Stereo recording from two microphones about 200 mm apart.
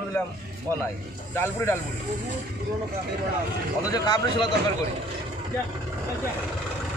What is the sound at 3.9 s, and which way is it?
Speech, 20° left (ahead or behind).